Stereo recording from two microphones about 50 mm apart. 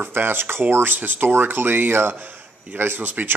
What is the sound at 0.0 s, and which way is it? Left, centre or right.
Speech, right.